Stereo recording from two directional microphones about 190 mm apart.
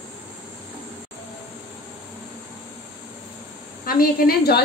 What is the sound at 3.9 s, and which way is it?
Speech, 50° left (ahead or behind).